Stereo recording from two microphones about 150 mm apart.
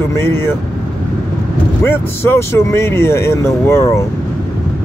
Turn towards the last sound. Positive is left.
turn(degrees=15)  # may be behind; listen again after turning